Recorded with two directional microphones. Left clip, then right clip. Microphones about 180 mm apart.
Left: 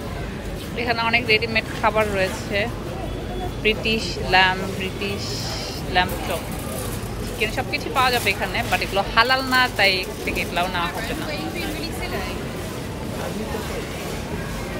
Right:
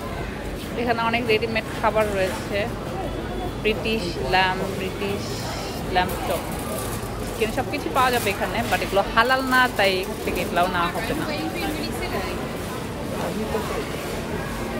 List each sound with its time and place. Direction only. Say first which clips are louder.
0.7 s speech: left 2 dB; 10° right (ahead or behind)
6.0 s speech: left 2 dB; 5° right (ahead or behind)
7.3 s speech: left 1 dB; 10° right (ahead or behind)